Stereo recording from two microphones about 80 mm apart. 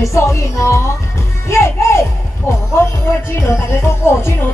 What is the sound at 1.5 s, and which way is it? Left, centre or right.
Speech, left.